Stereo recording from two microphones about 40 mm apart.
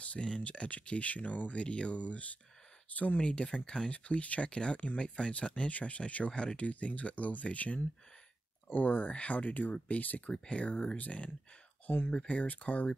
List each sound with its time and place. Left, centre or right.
0.0 s speech: left
1.6 s speech: left
3.2 s speech: left
10.3 s speech: left
10.6 s speech: left